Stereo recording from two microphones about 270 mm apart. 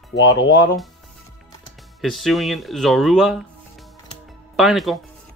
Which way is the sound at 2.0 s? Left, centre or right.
Centre.